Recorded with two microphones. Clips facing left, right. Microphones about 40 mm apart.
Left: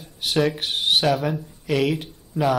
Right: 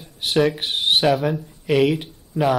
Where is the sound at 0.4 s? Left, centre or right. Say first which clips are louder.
Right 3 dB; centre.